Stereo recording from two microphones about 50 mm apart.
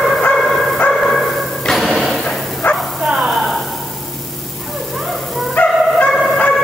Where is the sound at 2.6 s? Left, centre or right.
Left.